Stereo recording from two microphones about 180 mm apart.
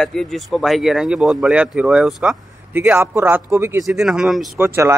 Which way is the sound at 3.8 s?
Centre (ahead or behind).